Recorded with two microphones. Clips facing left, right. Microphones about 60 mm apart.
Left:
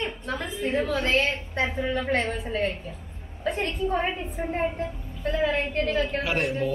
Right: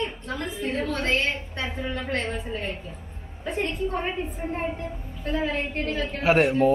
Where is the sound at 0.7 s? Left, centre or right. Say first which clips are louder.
Left 2 dB; centre.